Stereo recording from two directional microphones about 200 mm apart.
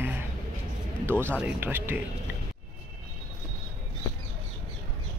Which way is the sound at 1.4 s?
10° right (ahead or behind).